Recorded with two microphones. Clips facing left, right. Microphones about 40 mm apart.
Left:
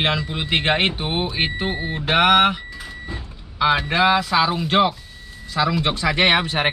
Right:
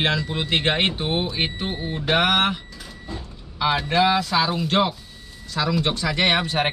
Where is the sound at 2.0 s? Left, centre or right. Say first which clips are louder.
Left 4 dB; centre.